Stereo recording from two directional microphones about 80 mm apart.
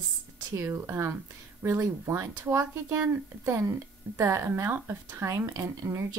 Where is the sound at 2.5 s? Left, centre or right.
Right.